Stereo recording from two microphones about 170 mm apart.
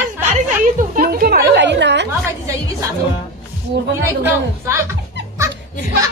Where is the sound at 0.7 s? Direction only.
55° right (ahead or behind); by 2.0 s 90° right.